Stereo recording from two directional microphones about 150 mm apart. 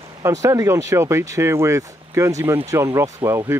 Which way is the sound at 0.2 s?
20° right (ahead or behind).